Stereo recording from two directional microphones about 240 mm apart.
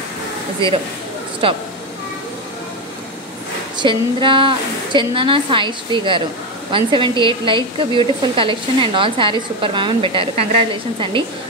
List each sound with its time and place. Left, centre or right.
1.4 s a woman's voice: right
3.7 s a woman's voice: centre